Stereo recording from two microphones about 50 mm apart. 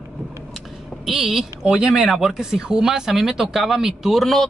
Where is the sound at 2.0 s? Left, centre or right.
Centre.